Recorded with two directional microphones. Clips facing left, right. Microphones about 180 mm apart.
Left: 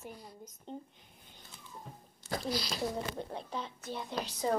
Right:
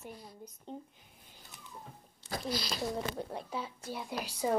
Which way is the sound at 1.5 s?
20° right (ahead or behind).